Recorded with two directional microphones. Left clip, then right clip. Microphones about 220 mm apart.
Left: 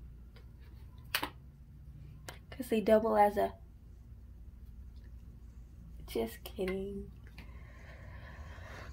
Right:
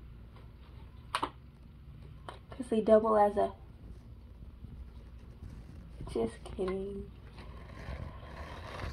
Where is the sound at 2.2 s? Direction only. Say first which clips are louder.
Right 1 dB; 30° left (ahead or behind).